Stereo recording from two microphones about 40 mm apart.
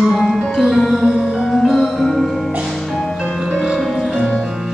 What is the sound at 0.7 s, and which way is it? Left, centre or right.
Music, centre.